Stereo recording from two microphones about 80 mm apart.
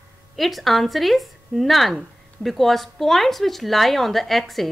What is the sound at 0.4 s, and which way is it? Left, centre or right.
Speech, centre.